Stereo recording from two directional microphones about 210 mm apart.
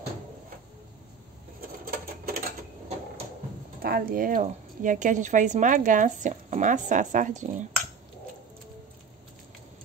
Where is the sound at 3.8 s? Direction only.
45° right (ahead or behind).